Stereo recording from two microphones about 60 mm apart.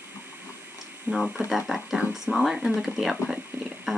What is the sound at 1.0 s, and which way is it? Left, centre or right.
Speech, centre.